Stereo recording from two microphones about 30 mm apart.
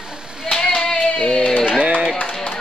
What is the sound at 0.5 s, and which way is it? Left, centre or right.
Clapping, centre.